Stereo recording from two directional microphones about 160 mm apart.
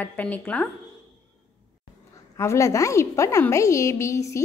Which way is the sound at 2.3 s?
15° left (ahead or behind).